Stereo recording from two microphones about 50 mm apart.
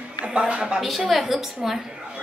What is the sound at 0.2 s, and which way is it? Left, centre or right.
Speech, right.